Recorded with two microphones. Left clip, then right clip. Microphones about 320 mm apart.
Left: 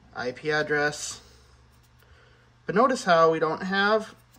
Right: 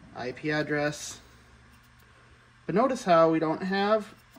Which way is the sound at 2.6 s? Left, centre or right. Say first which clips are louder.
Left 3 dB; centre.